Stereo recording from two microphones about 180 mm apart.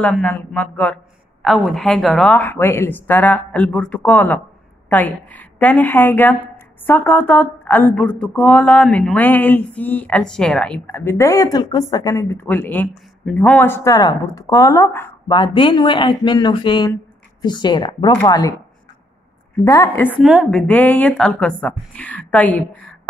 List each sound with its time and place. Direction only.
0.0 s a woman's voice: 5° left (ahead or behind)
15.3 s speech: 25° left (ahead or behind)
19.6 s a woman's voice: 15° left (ahead or behind)
20.1 s a woman's voice: centre (ahead or behind)